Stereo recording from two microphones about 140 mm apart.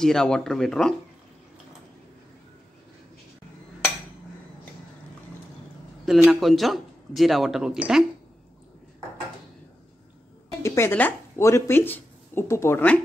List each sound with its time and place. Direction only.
0.0 s speech: 5° left (ahead or behind)
6.0 s speech: centre (ahead or behind)
10.6 s speech: 20° left (ahead or behind)